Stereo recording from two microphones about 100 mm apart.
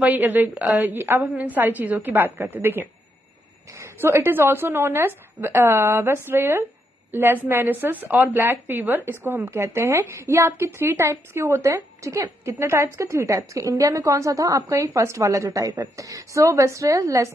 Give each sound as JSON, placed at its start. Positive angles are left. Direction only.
{"t": 0.0, "sound": "a woman's voice", "side_deg": -15}